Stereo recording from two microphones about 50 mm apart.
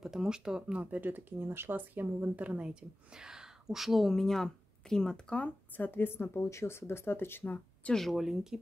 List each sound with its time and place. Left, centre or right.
0.0 s a woman's voice: centre; by 2.7 s right
2.7 s speech: centre
5.9 s a woman's voice: left
6.4 s speech: left
7.9 s speech: centre